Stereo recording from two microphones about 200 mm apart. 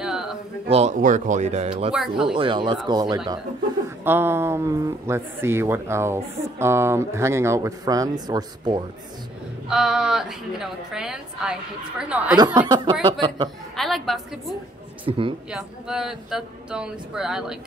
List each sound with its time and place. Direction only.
0.0 s a sound: centre (ahead or behind)
0.7 s speech: 30° right (ahead or behind)
1.9 s speech: 5° right (ahead or behind)
2.3 s speech: 25° right (ahead or behind)
9.7 s speech: 5° right (ahead or behind)
12.4 s speech: 20° right (ahead or behind)
13.7 s a woman's voice: centre (ahead or behind)
15.0 s speech: 25° right (ahead or behind)
15.5 s speech: 5° right (ahead or behind)